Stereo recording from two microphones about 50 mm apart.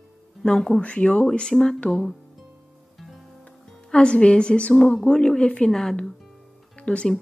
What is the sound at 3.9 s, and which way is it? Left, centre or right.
Speech, centre.